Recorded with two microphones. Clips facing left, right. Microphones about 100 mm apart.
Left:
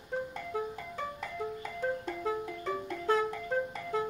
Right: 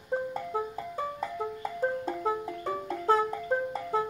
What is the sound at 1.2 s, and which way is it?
Music, 30° right (ahead or behind).